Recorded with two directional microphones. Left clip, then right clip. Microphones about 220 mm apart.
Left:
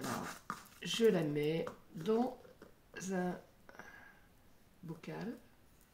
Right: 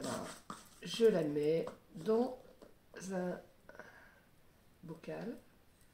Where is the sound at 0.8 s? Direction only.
40° left (ahead or behind).